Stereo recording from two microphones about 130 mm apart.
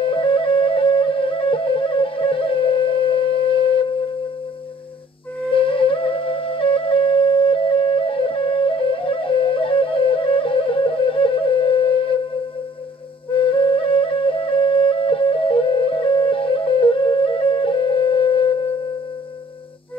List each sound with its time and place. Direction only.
0.0 s flute: 40° left (ahead or behind)
5.5 s music: 45° left (ahead or behind)
13.3 s flute: 40° left (ahead or behind)